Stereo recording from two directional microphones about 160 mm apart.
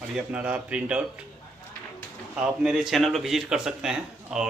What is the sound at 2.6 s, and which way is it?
A man's voice, 5° right (ahead or behind).